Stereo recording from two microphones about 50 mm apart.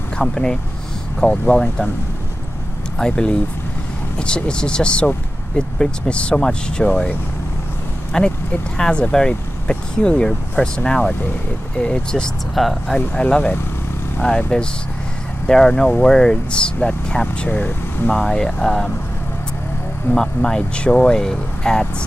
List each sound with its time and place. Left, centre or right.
0.2 s speech: centre
3.0 s speech: centre
8.1 s speech: centre
12.5 s speech: centre
13.1 s speech: left
18.1 s speech: centre
20.2 s speech: centre